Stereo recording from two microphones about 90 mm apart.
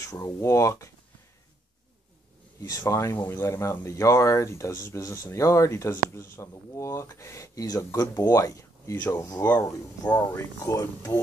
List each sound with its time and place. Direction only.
0.0 s speech: 35° left (ahead or behind)
2.6 s speech: 35° left (ahead or behind)
9.4 s speech: 20° left (ahead or behind)
10.3 s speech: 40° left (ahead or behind)